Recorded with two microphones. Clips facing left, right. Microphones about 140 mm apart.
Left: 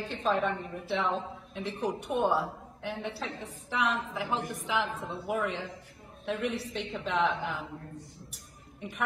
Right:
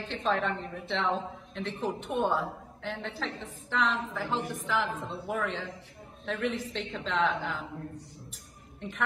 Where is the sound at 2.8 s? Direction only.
5° left (ahead or behind).